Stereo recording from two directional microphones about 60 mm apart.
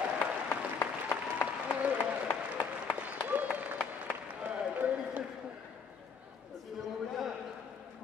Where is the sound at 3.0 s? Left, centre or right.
Right.